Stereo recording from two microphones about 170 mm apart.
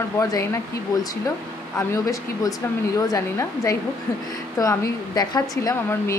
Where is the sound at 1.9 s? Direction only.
20° left (ahead or behind).